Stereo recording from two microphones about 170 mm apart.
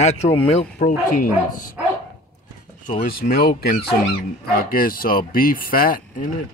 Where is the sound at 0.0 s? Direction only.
45° left (ahead or behind).